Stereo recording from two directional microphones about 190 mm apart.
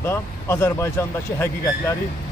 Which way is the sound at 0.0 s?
10° left (ahead or behind).